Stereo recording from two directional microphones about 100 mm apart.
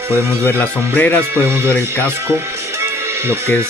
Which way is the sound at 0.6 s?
15° left (ahead or behind).